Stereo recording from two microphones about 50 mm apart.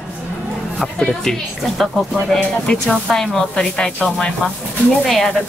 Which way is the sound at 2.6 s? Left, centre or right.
Centre.